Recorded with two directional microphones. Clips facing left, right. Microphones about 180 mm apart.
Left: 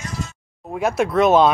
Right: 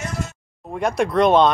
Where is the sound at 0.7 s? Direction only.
5° left (ahead or behind).